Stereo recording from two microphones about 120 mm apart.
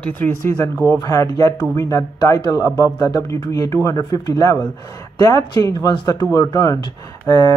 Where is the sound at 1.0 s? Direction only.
30° left (ahead or behind).